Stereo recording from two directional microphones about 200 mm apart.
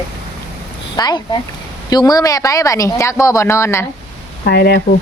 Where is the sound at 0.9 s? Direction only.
20° left (ahead or behind).